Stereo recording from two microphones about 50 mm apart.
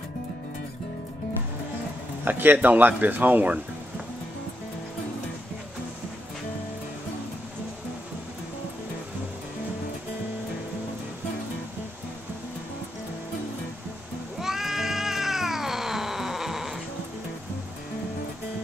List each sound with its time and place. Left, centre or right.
2.2 s speech: right
14.4 s cat: centre